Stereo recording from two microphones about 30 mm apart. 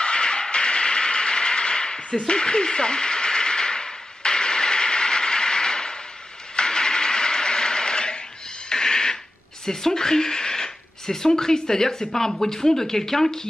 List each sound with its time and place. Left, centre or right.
0.0 s a sound: left
8.6 s music: left
9.7 s speech: centre